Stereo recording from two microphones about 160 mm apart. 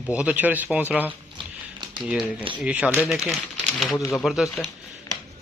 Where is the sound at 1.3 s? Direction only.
30° right (ahead or behind).